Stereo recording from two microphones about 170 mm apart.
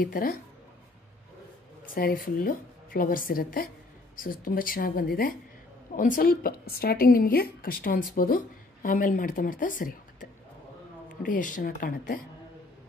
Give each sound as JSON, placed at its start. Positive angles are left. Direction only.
{"t": 0.0, "sound": "a woman's voice", "side_deg": 55}
{"t": 2.0, "sound": "a woman's voice", "side_deg": 55}
{"t": 11.2, "sound": "speech", "side_deg": 50}